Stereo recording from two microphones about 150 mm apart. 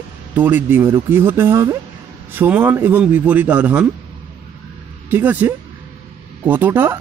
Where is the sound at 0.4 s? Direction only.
15° right (ahead or behind).